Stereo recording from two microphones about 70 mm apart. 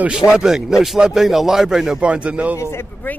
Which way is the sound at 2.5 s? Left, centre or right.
Left.